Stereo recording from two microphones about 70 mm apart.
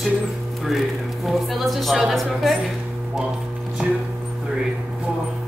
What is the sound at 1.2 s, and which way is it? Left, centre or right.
A woman's voice, centre.